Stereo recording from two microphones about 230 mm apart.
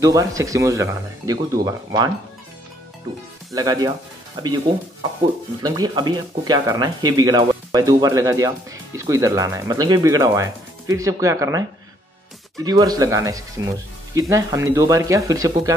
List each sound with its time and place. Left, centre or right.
0.0 s speech: centre
3.5 s speech: centre
5.6 s speech: centre
12.6 s speech: centre